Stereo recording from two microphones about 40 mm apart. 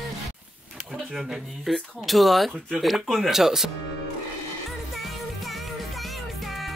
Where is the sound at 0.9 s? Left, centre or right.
Centre.